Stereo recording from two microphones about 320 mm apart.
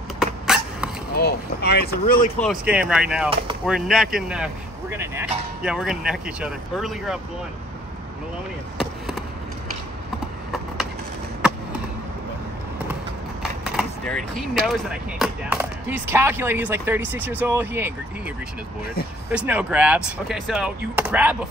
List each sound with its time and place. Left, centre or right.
0.2 s a sound: centre
1.1 s speech: left
2.3 s speech: centre
8.7 s basketball bounce: centre
11.4 s skateboard: centre
13.4 s vehicle: centre
14.7 s speech: centre
19.3 s speech: centre